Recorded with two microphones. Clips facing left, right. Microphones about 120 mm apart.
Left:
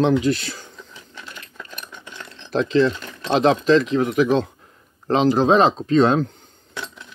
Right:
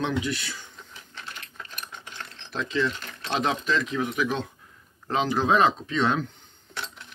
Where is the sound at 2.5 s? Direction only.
35° left (ahead or behind).